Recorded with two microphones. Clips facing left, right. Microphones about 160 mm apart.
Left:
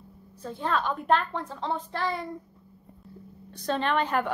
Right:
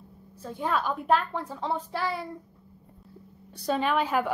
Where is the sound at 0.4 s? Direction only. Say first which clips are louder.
Even; 10° right (ahead or behind).